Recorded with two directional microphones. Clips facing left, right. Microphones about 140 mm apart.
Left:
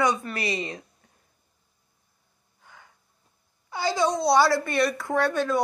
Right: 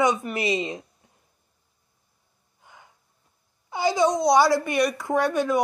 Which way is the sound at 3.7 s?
20° right (ahead or behind).